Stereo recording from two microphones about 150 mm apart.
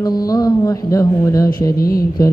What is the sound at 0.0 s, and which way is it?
A man's voice, 25° left (ahead or behind).